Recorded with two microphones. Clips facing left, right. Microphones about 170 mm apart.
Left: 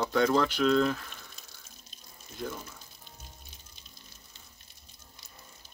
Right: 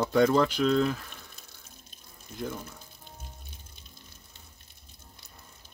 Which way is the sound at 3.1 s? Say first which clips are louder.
Right 4 dB; 55° right (ahead or behind).